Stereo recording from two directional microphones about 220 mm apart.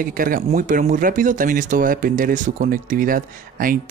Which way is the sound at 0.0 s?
40° right (ahead or behind).